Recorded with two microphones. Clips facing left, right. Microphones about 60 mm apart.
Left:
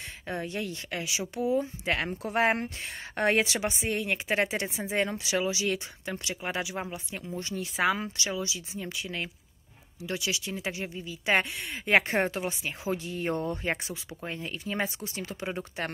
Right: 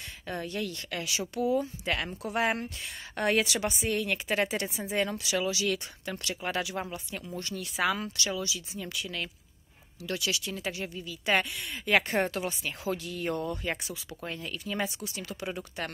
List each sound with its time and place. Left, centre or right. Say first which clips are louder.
0.3 s speech: left 1 dB; left